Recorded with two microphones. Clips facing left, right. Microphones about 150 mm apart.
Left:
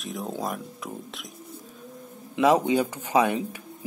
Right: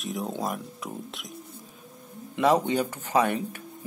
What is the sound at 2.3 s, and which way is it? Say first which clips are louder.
Speech: left 2 dB; 10° left (ahead or behind).